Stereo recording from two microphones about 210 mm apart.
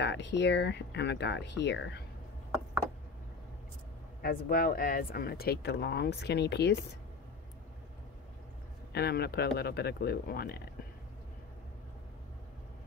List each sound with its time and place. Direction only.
0.0 s speech: 55° left (ahead or behind)
4.2 s speech: 45° left (ahead or behind)
8.9 s speech: 50° left (ahead or behind)